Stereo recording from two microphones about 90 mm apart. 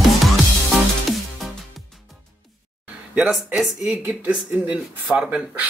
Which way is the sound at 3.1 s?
15° right (ahead or behind).